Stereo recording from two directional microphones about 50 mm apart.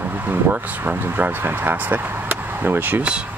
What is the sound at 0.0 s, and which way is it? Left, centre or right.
Speech, right.